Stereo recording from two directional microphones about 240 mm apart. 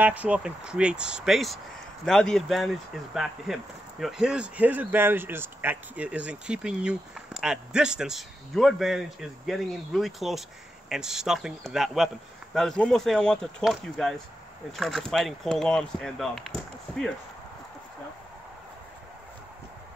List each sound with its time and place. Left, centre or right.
0.0 s speech: centre